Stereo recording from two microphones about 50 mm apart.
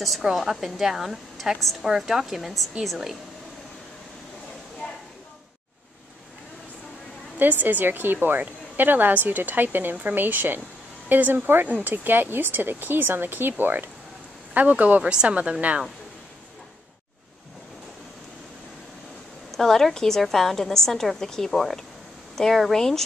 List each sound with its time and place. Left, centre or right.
0.2 s a woman's voice: centre
7.3 s a woman's voice: right
14.5 s a woman's voice: right
15.0 s a woman's voice: right
19.5 s a woman's voice: centre